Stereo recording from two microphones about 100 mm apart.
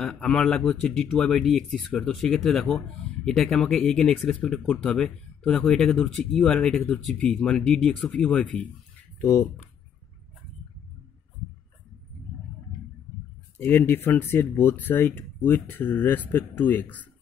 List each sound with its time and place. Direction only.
0.0 s speech: 5° left (ahead or behind)
13.6 s speech: 25° left (ahead or behind)